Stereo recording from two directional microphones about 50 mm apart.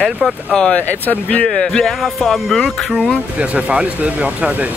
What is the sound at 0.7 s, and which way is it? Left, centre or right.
Speech, left.